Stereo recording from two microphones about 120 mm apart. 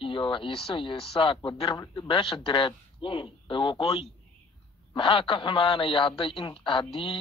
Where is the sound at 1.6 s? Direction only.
30° left (ahead or behind).